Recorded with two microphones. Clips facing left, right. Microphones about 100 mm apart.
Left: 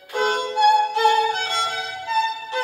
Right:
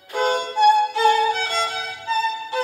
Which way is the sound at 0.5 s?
45° left (ahead or behind).